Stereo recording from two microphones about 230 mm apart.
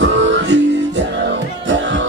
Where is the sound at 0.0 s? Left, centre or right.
Right.